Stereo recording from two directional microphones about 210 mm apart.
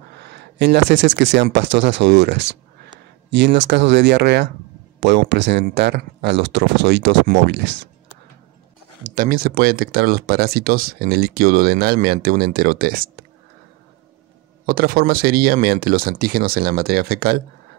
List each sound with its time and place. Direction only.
0.2 s speech: 55° right (ahead or behind)
9.0 s speech: 40° right (ahead or behind)
14.7 s speech: 45° right (ahead or behind)